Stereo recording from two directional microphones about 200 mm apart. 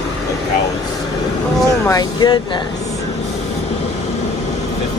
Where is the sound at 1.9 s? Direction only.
20° left (ahead or behind).